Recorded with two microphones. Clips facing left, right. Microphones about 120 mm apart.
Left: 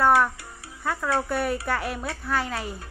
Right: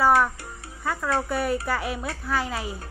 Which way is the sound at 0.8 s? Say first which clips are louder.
Even; centre (ahead or behind).